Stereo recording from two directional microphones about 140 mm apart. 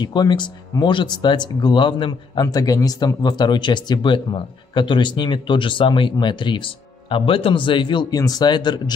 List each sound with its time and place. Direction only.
0.0 s speech: 30° left (ahead or behind)
2.4 s speech: 25° left (ahead or behind)